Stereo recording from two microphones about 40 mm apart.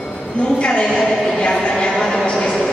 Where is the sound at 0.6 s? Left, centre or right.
Left.